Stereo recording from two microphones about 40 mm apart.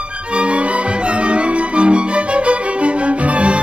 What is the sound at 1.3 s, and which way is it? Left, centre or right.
Music, right.